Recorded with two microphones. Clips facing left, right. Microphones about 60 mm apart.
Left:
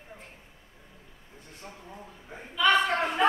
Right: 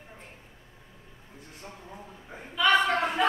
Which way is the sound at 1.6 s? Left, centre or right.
Centre.